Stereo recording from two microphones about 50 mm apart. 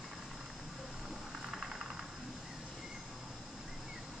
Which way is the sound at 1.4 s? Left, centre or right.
Centre.